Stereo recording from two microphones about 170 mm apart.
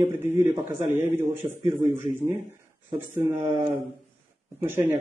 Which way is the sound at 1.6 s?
45° left (ahead or behind).